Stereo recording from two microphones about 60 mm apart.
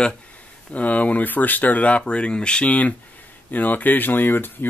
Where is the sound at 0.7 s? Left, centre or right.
Left.